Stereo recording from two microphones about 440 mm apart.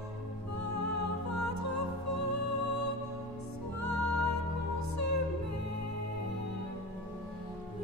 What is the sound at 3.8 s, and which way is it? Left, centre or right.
Music, left.